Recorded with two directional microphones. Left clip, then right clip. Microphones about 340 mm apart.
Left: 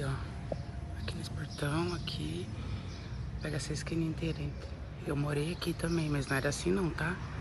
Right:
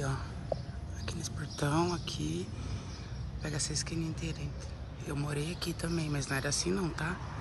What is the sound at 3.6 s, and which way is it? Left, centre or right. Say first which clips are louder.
Speech: right 4 dB; right.